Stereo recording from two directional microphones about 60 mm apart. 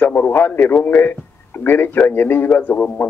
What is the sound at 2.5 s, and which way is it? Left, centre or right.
Speech, left.